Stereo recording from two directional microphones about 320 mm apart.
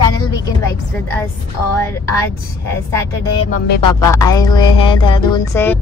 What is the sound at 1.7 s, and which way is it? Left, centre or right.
Music, centre.